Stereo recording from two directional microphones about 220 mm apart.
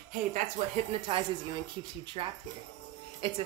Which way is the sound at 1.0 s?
20° right (ahead or behind).